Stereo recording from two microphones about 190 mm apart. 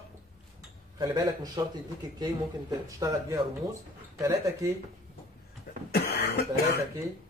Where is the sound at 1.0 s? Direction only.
20° right (ahead or behind).